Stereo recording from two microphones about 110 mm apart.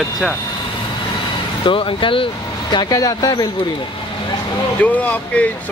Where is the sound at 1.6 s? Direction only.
50° left (ahead or behind); by 3.5 s 35° left (ahead or behind).